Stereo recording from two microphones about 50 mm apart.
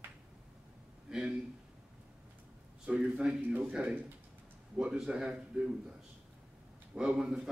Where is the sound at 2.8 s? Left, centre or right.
Right.